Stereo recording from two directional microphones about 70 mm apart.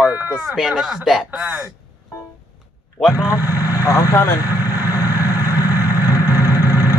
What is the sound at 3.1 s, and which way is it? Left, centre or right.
Speech, left.